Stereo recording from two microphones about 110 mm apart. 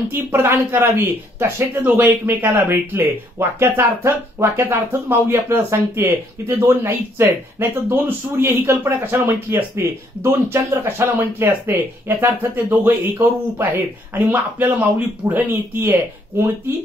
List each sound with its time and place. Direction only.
0.1 s speech: 20° right (ahead or behind)
14.1 s speech: 15° right (ahead or behind)